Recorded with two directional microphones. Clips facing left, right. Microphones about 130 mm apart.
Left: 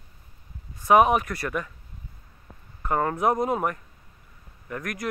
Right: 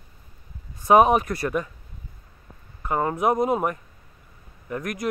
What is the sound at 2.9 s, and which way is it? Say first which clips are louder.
Speech: right 1 dB; 15° right (ahead or behind).